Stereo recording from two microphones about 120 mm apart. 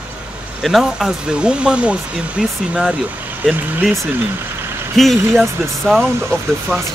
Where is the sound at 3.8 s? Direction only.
Centre (ahead or behind).